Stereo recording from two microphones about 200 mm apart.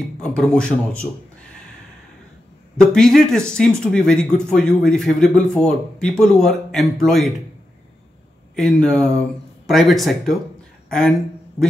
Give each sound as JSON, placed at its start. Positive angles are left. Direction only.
{"t": 0.2, "sound": "speech", "side_deg": 5}
{"t": 2.9, "sound": "speech", "side_deg": 0}
{"t": 8.5, "sound": "speech", "side_deg": 0}